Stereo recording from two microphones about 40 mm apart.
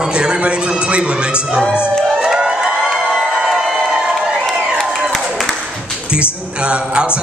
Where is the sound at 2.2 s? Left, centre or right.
Centre.